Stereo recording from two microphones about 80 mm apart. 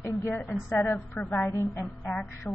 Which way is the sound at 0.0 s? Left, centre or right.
Left.